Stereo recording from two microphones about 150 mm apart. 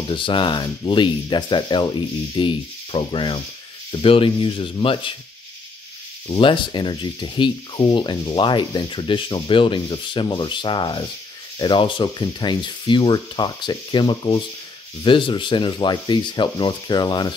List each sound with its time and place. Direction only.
0.1 s speech: 35° left (ahead or behind)
6.2 s speech: 35° left (ahead or behind)